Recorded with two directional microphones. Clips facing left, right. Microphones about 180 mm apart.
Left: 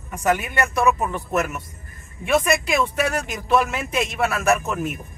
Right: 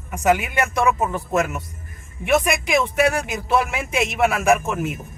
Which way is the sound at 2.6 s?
15° right (ahead or behind).